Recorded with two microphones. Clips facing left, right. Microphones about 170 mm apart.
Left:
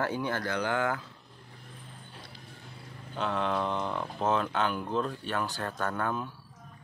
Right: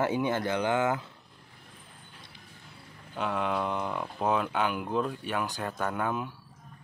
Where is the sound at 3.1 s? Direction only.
10° right (ahead or behind).